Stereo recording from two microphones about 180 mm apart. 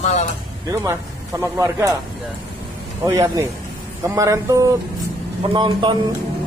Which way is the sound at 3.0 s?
20° right (ahead or behind).